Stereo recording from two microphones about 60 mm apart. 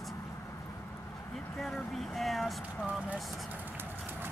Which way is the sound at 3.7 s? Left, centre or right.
Right.